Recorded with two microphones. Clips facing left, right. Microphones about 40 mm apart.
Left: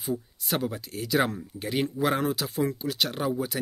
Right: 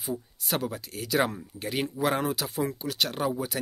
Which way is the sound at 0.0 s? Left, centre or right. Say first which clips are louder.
Left 2 dB; centre.